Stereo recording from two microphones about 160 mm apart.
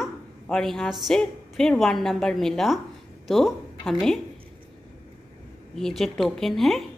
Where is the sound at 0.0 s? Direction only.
Centre (ahead or behind).